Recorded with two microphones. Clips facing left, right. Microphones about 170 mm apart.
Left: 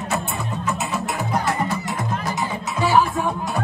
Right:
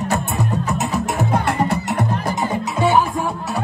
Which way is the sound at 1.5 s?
65° right (ahead or behind).